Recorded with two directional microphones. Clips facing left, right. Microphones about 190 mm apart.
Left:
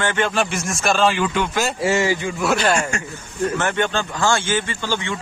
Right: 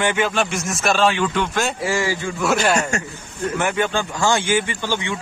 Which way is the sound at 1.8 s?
25° left (ahead or behind).